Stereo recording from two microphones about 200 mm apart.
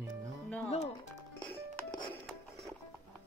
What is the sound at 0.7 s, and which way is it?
Music, 30° left (ahead or behind).